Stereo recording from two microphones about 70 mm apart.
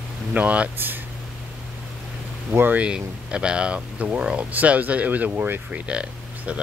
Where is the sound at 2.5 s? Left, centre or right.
Right.